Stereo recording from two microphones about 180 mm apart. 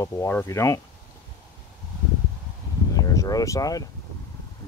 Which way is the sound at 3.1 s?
20° left (ahead or behind).